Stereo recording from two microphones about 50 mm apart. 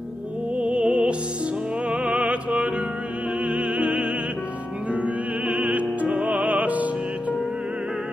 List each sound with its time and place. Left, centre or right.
0.6 s music: right
3.4 s opera: right
4.9 s music: right